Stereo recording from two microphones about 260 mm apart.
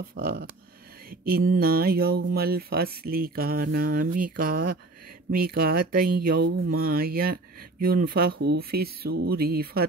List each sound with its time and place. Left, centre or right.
0.0 s speech: right
1.5 s speech: right